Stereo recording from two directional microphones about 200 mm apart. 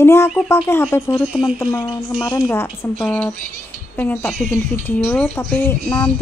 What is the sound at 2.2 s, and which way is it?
A woman's voice, 15° left (ahead or behind).